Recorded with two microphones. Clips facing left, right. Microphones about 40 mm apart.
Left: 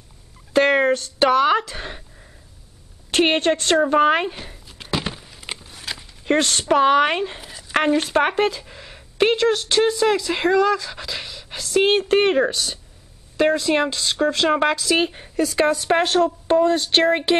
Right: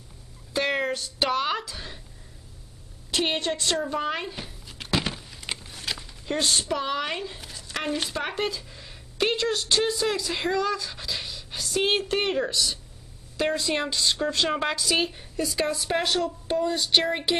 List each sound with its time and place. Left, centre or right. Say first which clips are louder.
0.5 s a sound: left 9 dB; left
1.6 s speech: left 7 dB; left
3.1 s a woman's voice: left 8 dB; left
4.6 s a sound: left 1 dB; centre
6.2 s a woman's voice: left 7 dB; left
9.4 s speech: left 7 dB; left
11.6 s speech: left 7 dB; left
15.5 s speech: left 8 dB; left